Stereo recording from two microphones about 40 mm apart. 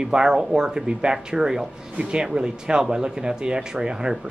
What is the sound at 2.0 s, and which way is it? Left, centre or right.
A man's voice, right.